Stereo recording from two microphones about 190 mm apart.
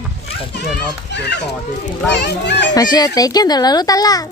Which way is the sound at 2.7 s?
20° left (ahead or behind).